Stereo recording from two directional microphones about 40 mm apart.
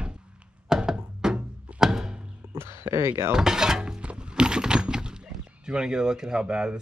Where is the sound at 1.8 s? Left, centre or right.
Centre.